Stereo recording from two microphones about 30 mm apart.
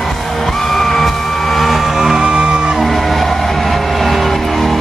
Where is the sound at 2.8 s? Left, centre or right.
Centre.